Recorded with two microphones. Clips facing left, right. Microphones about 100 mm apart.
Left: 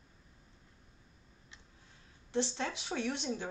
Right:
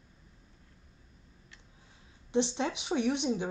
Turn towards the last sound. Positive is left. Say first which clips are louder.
# right 7 dB
turn(degrees=-20)  # may be behind; listen again after turning